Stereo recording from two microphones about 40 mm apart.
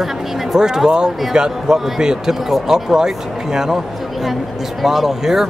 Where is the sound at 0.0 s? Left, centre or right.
Centre.